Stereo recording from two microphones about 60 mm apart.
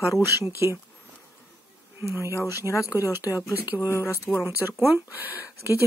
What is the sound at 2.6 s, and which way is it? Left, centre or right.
Speech, left.